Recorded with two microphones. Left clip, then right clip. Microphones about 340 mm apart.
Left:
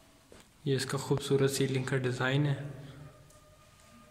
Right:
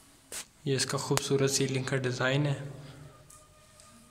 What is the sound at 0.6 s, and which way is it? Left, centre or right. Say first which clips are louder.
Speech: right 2 dB; centre.